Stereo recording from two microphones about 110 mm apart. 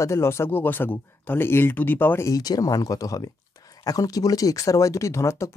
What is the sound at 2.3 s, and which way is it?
Speech, 35° left (ahead or behind).